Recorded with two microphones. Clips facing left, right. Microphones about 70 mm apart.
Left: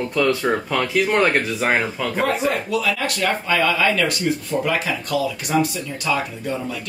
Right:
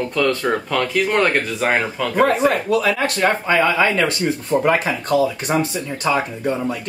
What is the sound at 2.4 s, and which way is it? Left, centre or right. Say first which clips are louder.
Speech: right 4 dB; right.